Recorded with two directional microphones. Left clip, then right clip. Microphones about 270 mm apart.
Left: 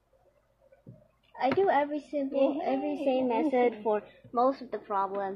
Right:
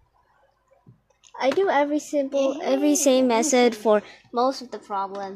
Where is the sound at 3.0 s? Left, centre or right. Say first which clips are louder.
Right 5 dB; right.